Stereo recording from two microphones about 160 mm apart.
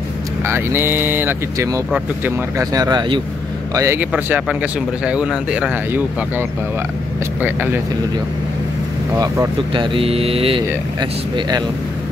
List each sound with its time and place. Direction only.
0.5 s a man's voice: 15° right (ahead or behind)
7.4 s speech: 10° right (ahead or behind)
9.1 s speech: 20° right (ahead or behind)